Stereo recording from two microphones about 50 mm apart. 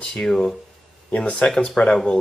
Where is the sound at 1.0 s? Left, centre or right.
Left.